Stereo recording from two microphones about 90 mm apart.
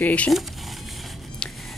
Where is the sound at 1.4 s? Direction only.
10° left (ahead or behind).